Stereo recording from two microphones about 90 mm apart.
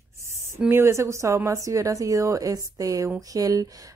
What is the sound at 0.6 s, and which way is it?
Speech, 30° right (ahead or behind).